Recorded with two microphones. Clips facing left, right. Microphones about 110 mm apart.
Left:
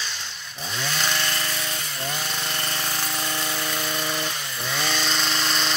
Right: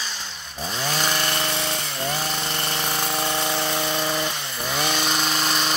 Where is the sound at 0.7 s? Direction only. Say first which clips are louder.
Right 3 dB; 35° right (ahead or behind).